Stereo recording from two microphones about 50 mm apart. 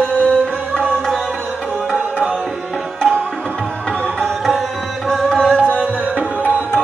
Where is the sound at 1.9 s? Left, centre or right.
Right.